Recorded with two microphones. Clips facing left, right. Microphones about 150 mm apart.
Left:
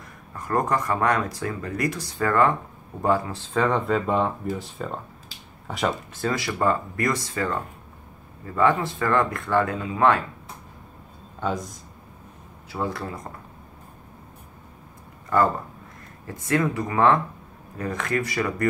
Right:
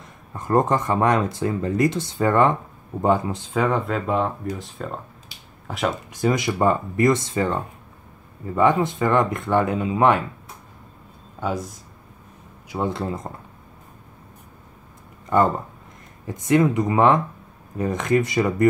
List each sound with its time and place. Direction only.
0.3 s speech: 25° right (ahead or behind); by 5.9 s centre (ahead or behind)
6.1 s speech: 20° right (ahead or behind)
11.3 s speech: 5° right (ahead or behind)
12.7 s speech: 20° right (ahead or behind)
15.2 s speech: 20° right (ahead or behind)